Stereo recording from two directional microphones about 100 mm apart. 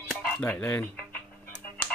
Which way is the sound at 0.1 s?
15° left (ahead or behind).